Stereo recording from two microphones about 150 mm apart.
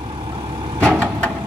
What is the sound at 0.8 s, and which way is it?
Vehicle, 10° right (ahead or behind).